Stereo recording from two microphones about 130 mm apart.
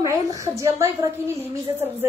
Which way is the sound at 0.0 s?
25° right (ahead or behind).